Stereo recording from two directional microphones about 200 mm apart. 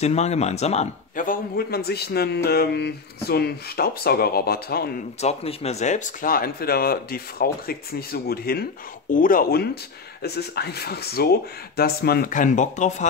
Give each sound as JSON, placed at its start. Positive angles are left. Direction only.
{"t": 0.0, "sound": "speech", "side_deg": 35}
{"t": 5.2, "sound": "speech", "side_deg": 30}